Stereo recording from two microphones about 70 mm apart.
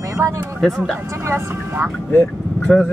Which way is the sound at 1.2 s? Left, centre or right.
Right.